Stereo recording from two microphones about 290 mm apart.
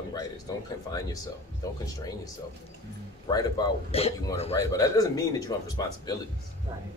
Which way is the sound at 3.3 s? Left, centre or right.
Centre.